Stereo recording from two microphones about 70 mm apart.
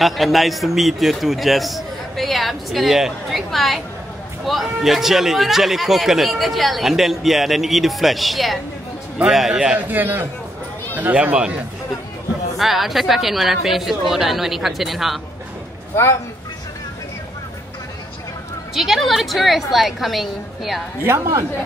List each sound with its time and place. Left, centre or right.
0.0 s a man's voice: centre
9.8 s speech: right
12.5 s a man's voice: centre
15.9 s speech: left
18.8 s a man's voice: centre
21.0 s a woman's voice: right